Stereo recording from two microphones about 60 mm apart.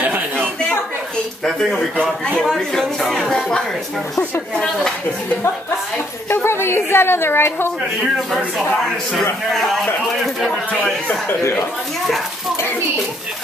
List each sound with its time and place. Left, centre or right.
0.0 s chuckle: right
2.4 s speech: centre
6.2 s a woman's voice: left
9.5 s speech: centre